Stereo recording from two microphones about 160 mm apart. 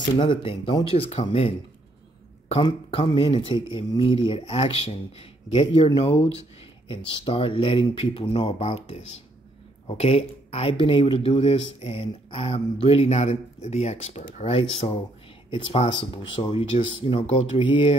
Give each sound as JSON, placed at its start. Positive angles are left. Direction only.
{"t": 0.2, "sound": "speech", "side_deg": 35}
{"t": 3.1, "sound": "speech", "side_deg": 30}